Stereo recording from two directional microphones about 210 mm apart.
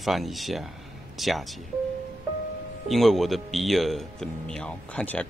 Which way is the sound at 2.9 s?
Centre (ahead or behind).